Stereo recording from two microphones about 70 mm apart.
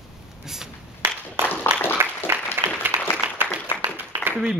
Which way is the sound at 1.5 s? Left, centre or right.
Left.